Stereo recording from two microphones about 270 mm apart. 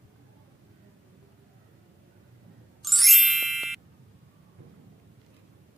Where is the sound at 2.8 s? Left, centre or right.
Centre.